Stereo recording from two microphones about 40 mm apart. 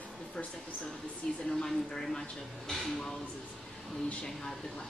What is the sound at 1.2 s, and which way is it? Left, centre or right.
A woman's voice, centre.